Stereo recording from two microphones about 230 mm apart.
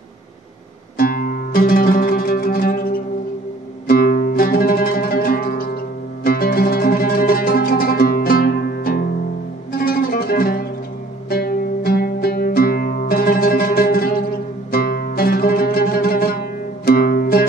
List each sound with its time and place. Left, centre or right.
0.9 s music: left
14.7 s zither: left